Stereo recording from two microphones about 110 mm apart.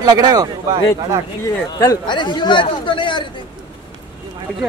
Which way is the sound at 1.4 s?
30° left (ahead or behind).